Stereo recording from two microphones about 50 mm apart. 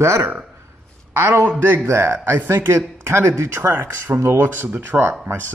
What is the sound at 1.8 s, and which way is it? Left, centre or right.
Speech, right.